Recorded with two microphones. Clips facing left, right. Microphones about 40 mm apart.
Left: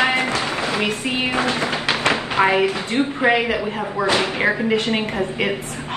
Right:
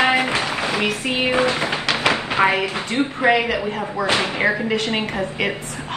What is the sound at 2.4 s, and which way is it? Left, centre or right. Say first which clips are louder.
Speech: even; centre.